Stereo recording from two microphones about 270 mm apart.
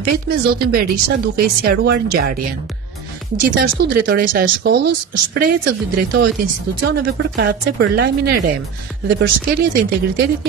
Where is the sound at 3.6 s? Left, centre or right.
Right.